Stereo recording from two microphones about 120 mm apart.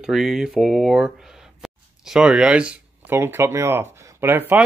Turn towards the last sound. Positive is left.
turn(degrees=-15)  # may be behind; listen again after turning